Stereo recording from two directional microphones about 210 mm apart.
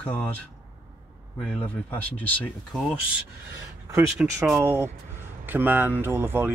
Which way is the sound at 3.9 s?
10° right (ahead or behind).